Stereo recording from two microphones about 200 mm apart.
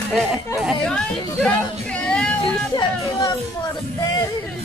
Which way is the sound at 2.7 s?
20° left (ahead or behind).